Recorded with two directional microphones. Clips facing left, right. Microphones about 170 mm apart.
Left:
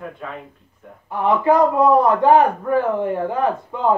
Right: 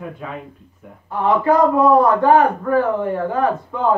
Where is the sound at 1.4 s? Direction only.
20° left (ahead or behind).